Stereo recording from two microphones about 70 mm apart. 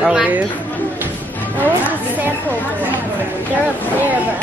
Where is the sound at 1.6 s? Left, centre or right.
Right.